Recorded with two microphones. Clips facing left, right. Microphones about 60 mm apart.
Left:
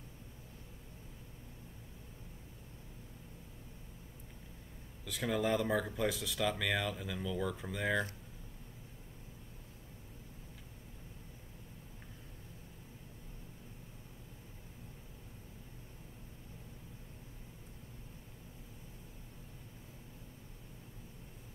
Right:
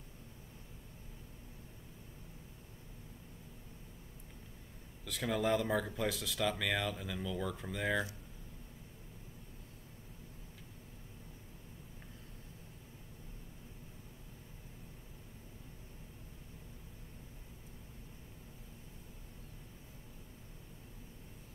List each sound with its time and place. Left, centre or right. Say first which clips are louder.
5.0 s speech: even; centre